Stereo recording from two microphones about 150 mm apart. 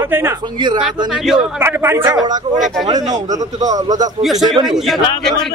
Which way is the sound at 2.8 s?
25° right (ahead or behind).